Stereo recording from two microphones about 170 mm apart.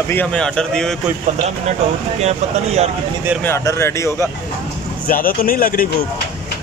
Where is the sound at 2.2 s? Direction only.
40° right (ahead or behind).